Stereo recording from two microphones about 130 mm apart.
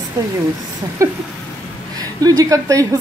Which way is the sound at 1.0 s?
25° right (ahead or behind).